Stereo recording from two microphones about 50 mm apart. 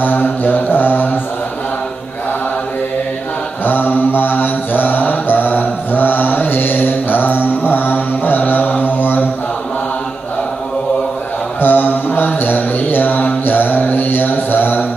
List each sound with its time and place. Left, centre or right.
0.0 s mantra: left
3.6 s mantra: left
11.6 s mantra: left